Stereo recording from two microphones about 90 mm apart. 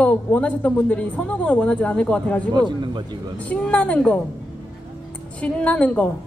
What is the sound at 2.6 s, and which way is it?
Speech, 55° right (ahead or behind).